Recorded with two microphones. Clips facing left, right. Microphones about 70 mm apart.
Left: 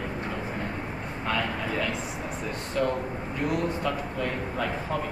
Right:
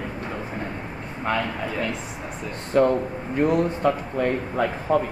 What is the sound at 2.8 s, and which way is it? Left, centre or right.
Speech, right.